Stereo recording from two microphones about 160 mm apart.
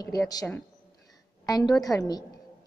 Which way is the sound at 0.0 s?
20° left (ahead or behind).